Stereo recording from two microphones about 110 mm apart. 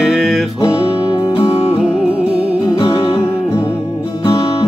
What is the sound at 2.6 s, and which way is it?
Music, 30° left (ahead or behind).